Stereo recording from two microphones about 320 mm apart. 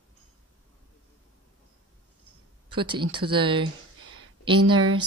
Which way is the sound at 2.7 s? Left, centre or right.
Centre.